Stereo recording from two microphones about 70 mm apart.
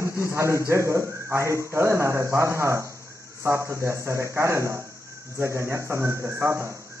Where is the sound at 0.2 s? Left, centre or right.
Right.